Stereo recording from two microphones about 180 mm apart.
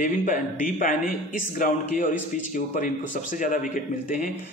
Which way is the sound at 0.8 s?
50° left (ahead or behind).